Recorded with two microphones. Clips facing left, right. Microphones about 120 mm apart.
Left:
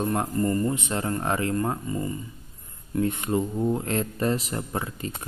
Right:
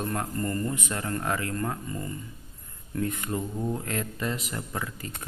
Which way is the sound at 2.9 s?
20° left (ahead or behind).